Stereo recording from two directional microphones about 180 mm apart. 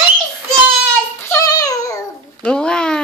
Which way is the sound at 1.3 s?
20° left (ahead or behind).